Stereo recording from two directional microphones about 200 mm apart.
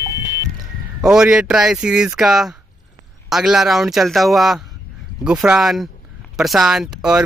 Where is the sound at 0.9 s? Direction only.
5° right (ahead or behind).